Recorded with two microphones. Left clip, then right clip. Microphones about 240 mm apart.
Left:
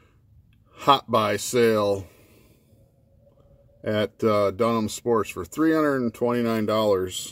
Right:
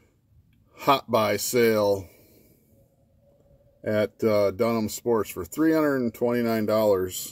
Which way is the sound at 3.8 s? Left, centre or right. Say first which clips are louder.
Even; centre.